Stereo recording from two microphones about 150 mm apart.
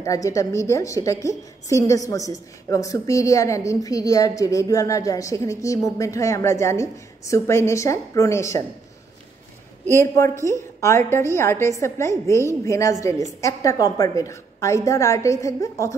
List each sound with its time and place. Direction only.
0.0 s a woman's voice: 20° left (ahead or behind)
9.9 s a woman's voice: 20° left (ahead or behind)